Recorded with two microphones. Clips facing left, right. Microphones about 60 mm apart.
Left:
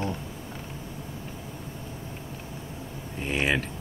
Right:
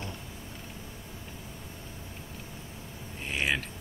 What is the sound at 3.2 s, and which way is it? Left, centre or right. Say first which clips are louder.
Speech: left 4 dB; centre.